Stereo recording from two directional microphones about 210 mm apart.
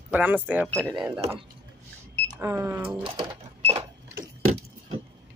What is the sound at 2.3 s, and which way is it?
Speech, 15° right (ahead or behind).